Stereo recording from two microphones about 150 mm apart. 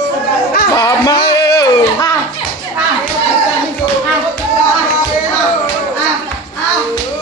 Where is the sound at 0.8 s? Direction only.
20° left (ahead or behind).